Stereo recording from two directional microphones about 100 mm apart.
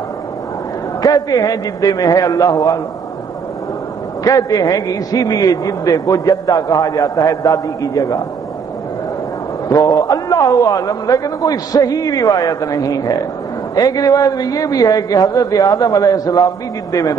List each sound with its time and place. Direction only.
1.0 s a man's voice: 40° left (ahead or behind)
4.2 s a man's voice: 35° left (ahead or behind)
9.7 s a man's voice: 35° left (ahead or behind)